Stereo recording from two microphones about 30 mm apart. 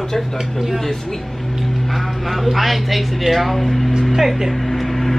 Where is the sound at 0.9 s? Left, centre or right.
Centre.